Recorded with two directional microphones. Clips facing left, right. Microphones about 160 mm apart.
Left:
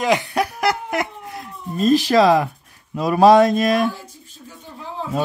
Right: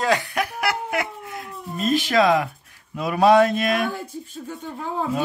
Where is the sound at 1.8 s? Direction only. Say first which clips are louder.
Left 5 dB; 35° left (ahead or behind).